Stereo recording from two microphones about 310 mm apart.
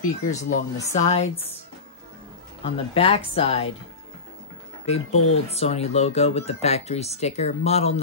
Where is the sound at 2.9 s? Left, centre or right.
Centre.